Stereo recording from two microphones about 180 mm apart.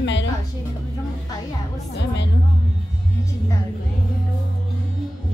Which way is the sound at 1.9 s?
70° left (ahead or behind).